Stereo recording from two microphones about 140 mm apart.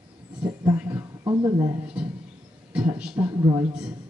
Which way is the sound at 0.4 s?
20° right (ahead or behind).